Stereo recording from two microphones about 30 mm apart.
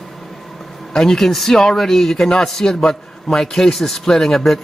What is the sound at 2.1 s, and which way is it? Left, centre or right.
Speech, left.